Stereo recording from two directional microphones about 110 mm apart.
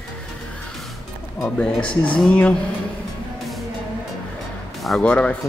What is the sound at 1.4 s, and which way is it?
Speech, 10° left (ahead or behind).